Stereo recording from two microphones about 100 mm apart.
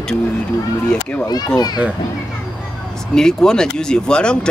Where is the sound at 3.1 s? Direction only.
5° left (ahead or behind).